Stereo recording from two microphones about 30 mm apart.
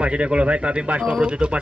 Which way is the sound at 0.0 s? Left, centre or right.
Right.